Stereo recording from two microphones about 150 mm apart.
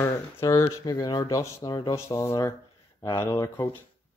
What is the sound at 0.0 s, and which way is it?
Speech, 20° left (ahead or behind).